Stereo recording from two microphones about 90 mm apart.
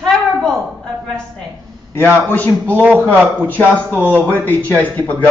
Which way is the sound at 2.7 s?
20° right (ahead or behind).